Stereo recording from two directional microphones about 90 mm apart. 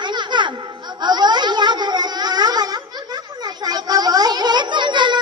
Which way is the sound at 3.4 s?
50° right (ahead or behind).